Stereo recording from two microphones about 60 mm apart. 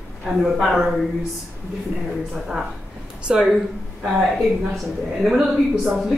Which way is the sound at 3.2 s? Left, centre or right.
Centre.